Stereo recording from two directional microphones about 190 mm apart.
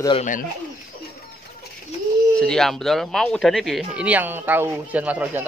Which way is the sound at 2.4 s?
5° left (ahead or behind).